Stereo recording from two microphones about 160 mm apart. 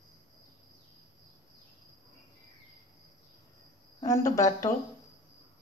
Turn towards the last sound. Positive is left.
turn(degrees=20)  # may be behind; listen again after turning